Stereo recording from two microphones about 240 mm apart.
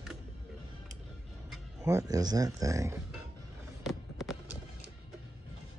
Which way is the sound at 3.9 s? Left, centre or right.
Centre.